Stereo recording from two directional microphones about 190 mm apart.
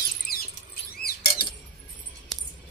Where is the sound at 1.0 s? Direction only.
55° left (ahead or behind).